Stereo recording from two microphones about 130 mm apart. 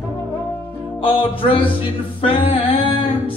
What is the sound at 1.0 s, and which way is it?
Music, 45° left (ahead or behind).